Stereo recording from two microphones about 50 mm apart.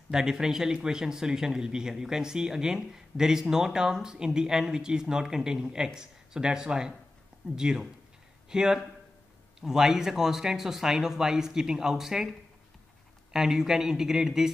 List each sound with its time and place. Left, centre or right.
0.1 s speech: centre